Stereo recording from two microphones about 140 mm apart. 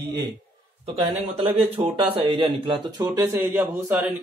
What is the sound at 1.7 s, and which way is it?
Speech, 40° right (ahead or behind).